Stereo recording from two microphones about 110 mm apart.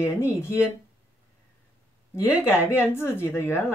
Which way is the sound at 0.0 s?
25° left (ahead or behind).